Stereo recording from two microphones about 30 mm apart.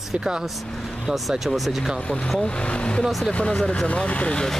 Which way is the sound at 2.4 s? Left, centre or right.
Left.